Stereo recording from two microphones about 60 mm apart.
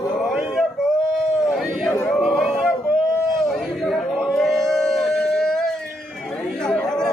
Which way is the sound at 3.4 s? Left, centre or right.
Centre.